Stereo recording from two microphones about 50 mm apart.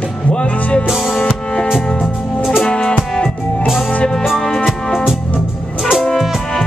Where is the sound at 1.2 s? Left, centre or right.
Centre.